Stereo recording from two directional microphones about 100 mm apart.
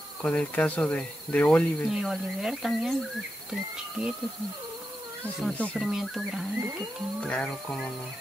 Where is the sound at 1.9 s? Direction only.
5° right (ahead or behind).